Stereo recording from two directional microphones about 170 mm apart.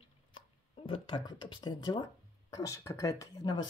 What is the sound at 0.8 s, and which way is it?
Speech, 30° left (ahead or behind).